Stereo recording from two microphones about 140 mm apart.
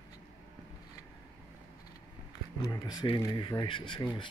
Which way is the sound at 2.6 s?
30° left (ahead or behind).